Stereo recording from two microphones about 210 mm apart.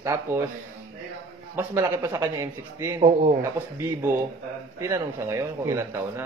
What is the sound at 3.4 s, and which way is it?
A man's voice, 10° right (ahead or behind).